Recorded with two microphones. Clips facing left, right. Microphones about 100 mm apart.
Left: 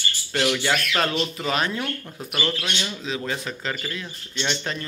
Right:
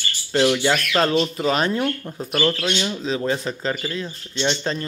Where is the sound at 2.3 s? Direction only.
5° left (ahead or behind).